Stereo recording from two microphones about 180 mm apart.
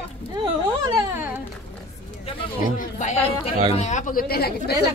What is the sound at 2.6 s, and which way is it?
Chatter, 45° left (ahead or behind).